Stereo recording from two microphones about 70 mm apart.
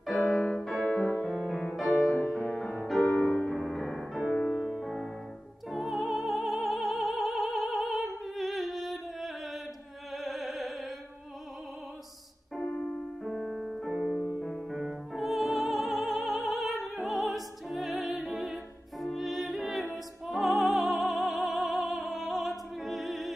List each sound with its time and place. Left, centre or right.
0.0 s piano: centre
0.7 s music: centre
4.3 s music: centre
4.6 s music: centre
5.7 s opera: centre
10.1 s music: centre
13.2 s music: centre